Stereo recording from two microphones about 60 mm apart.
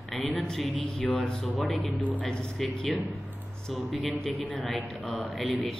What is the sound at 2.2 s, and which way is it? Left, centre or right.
Speech, centre.